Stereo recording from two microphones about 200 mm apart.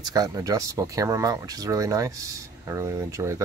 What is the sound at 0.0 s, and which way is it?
Speech, 20° right (ahead or behind).